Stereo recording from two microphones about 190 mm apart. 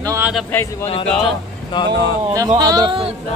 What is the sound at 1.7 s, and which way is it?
Speech, 25° left (ahead or behind).